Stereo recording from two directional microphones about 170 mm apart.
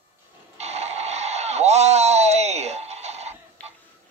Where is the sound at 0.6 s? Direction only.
40° right (ahead or behind).